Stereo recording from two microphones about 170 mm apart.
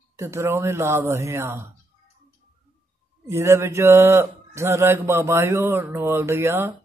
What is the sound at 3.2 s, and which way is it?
Speech, 15° right (ahead or behind).